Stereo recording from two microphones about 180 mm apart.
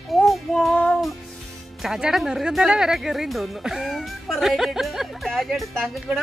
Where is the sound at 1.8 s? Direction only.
5° right (ahead or behind).